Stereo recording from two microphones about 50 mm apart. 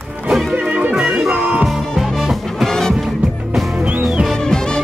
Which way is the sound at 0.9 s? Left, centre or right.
Centre.